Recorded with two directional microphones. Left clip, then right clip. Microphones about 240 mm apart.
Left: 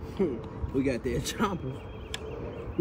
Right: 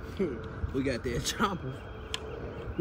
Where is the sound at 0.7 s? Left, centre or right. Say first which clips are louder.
Left 3 dB; right.